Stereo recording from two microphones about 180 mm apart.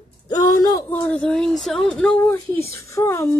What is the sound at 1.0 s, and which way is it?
Speech, 5° left (ahead or behind).